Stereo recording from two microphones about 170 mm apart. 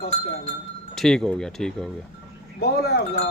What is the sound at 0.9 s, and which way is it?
Speech, 5° left (ahead or behind).